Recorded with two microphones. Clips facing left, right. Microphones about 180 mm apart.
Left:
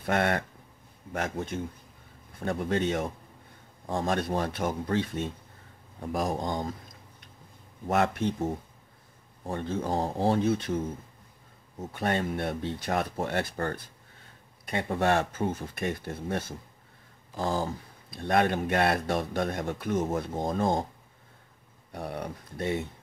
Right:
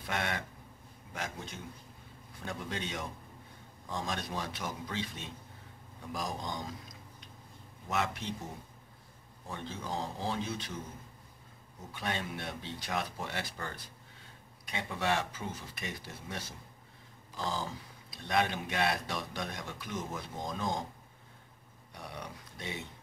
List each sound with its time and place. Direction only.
0.0 s speech: 55° left (ahead or behind)
7.9 s speech: 55° left (ahead or behind)
11.9 s speech: 55° left (ahead or behind)
21.9 s speech: 55° left (ahead or behind)